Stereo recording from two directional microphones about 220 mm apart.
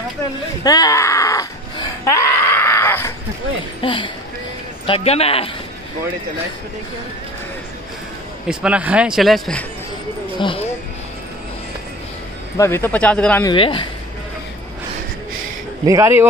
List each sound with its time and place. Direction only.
0.7 s wail: 15° left (ahead or behind)
3.8 s a man's voice: 20° left (ahead or behind)
8.5 s speech: 5° right (ahead or behind)
12.5 s speech: 10° left (ahead or behind)
13.5 s a man's voice: 20° left (ahead or behind)
15.8 s speech: 15° right (ahead or behind)